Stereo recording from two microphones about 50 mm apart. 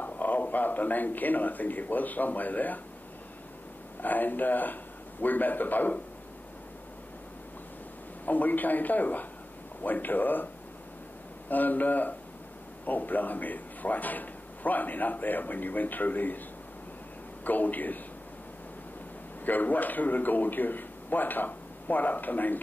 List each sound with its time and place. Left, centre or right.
0.0 s speech: left
4.0 s a man's voice: left
8.3 s a man's voice: left
17.5 s a man's voice: left
19.4 s a man's voice: left